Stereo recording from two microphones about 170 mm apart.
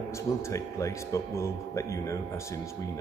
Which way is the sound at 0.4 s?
15° left (ahead or behind).